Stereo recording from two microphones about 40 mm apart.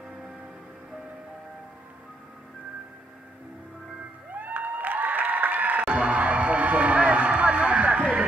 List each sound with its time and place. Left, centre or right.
4.3 s applause: right
5.9 s music: right